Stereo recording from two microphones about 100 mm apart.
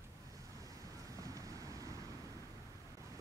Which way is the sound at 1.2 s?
35° right (ahead or behind).